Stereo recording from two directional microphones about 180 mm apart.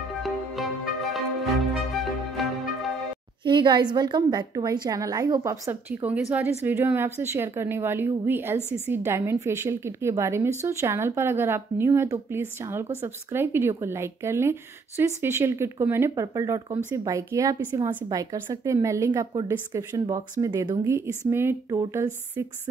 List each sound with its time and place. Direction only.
0.2 s music: centre (ahead or behind)
2.4 s music: centre (ahead or behind)
3.4 s a woman's voice: 25° right (ahead or behind)